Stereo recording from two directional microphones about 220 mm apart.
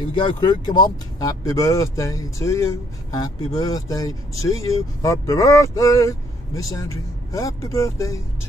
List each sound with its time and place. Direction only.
0.1 s speech: 20° left (ahead or behind)